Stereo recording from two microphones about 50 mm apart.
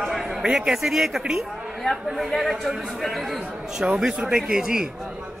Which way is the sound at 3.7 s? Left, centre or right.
Centre.